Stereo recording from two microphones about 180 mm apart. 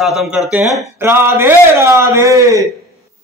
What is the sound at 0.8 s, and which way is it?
A man's voice, 15° right (ahead or behind).